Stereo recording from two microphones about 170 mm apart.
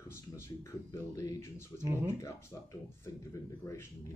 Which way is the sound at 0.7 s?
20° left (ahead or behind).